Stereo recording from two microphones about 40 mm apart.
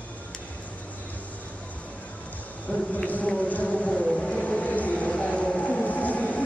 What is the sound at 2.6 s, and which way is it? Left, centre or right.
Vehicle, left.